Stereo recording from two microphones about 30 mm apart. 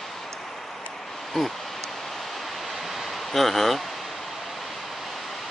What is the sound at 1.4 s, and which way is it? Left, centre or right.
Speech, centre.